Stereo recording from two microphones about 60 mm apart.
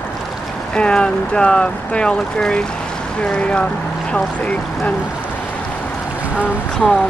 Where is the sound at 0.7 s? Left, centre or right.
Centre.